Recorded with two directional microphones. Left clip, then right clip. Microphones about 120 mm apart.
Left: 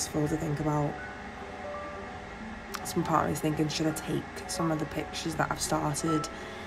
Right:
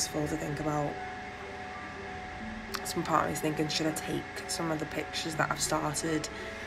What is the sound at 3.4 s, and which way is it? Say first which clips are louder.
Speech: left 1 dB; 25° left (ahead or behind).